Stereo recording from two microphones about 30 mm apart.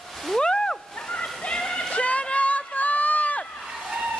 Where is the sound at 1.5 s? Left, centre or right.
Left.